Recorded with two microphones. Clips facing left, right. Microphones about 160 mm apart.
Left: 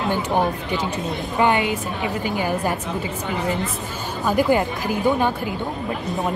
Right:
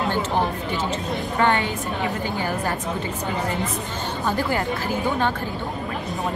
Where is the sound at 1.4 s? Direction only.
15° left (ahead or behind).